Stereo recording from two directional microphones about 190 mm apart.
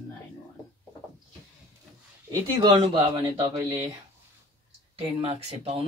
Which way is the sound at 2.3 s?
20° right (ahead or behind).